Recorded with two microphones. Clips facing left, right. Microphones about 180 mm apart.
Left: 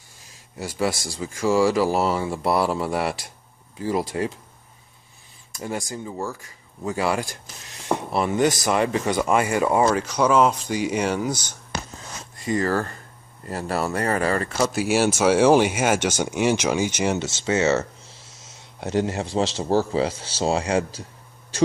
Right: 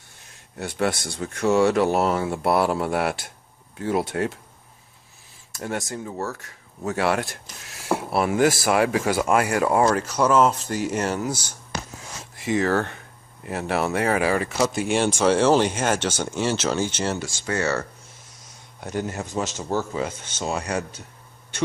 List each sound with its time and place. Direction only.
0.2 s speech: centre (ahead or behind)
5.5 s speech: centre (ahead or behind); by 21.0 s 30° left (ahead or behind)